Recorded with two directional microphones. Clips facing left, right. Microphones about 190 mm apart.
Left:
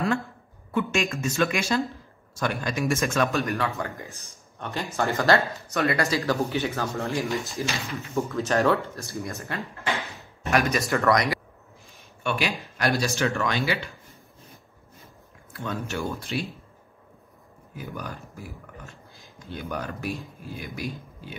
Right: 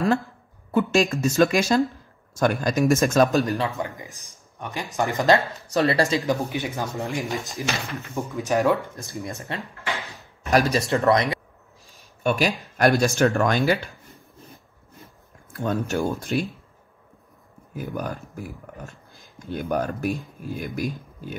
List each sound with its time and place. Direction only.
0.7 s a man's voice: 35° right (ahead or behind)
3.4 s speech: 20° right (ahead or behind)
5.7 s speech: 30° right (ahead or behind)
10.5 s speech: 35° right (ahead or behind)
10.9 s speech: 20° right (ahead or behind)
12.2 s speech: 40° right (ahead or behind)
15.5 s speech: 45° right (ahead or behind)
17.7 s speech: 45° right (ahead or behind)
19.5 s speech: 45° right (ahead or behind)